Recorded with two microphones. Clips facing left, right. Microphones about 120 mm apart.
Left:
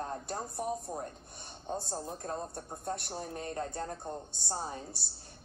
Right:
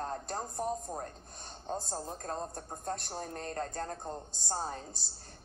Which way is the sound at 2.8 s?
5° left (ahead or behind).